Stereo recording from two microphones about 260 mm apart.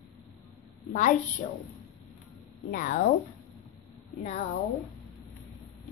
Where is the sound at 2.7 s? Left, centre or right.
Left.